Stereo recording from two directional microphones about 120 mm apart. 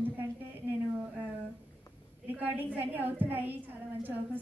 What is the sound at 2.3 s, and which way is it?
A woman's voice, 15° right (ahead or behind).